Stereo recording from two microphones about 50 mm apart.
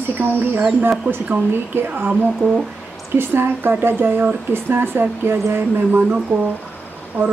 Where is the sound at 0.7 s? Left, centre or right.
Right.